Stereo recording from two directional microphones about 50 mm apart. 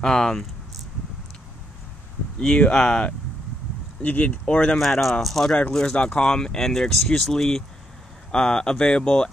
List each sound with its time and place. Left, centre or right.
0.0 s speech: centre
2.4 s speech: centre
4.0 s speech: left
4.5 s speech: left
4.7 s speech: centre